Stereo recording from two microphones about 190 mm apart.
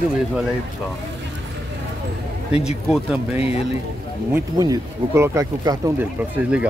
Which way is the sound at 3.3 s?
30° left (ahead or behind).